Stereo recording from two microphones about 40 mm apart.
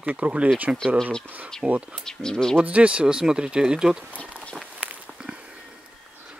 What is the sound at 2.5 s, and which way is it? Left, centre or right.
Speech, right.